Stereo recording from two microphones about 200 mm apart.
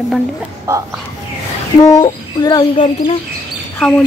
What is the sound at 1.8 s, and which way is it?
Speech, 20° left (ahead or behind).